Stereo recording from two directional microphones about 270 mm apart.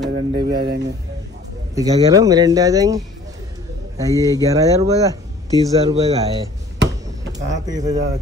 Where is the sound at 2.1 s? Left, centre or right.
Centre.